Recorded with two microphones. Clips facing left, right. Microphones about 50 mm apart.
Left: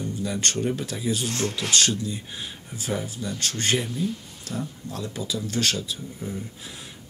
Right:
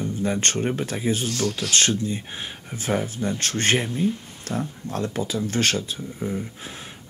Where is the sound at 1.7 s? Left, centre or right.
Right.